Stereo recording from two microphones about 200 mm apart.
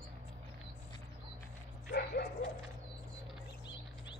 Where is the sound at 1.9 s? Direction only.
60° left (ahead or behind).